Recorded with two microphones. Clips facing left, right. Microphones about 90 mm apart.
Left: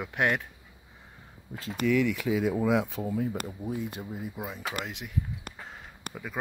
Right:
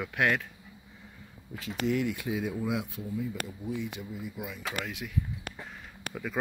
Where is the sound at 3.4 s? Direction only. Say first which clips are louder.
Left 1 dB; 40° left (ahead or behind).